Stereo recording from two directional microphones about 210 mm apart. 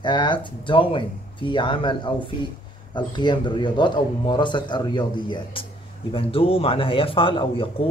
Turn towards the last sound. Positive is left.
turn(degrees=25)  # may be behind; listen again after turning